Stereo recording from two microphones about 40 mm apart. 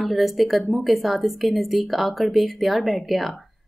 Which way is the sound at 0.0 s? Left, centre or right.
Centre.